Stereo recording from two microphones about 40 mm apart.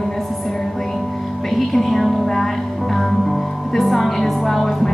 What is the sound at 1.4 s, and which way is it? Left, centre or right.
Speech, centre.